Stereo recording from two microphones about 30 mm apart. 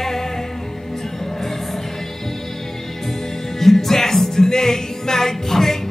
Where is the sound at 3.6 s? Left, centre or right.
Centre.